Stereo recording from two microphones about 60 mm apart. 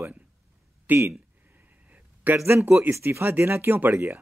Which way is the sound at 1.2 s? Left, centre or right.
Right.